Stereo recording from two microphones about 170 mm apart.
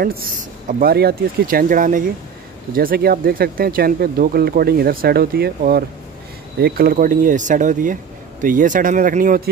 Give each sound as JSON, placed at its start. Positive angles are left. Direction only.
{"t": 0.0, "sound": "speech", "side_deg": -55}